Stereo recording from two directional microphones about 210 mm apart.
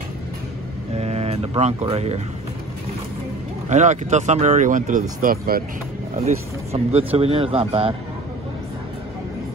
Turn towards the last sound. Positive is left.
turn(degrees=-25)  # may be behind; listen again after turning